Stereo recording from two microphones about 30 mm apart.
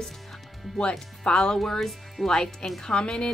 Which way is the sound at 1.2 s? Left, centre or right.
Left.